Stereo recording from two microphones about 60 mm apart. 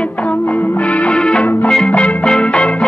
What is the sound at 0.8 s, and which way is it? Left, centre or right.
Music, left.